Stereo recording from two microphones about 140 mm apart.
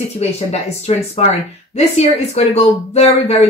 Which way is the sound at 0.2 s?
50° left (ahead or behind).